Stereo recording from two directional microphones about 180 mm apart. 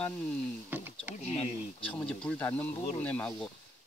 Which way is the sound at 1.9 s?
5° left (ahead or behind).